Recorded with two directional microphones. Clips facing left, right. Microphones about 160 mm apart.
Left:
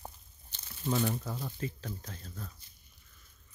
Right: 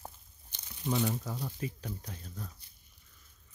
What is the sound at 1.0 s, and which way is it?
Speech, centre (ahead or behind).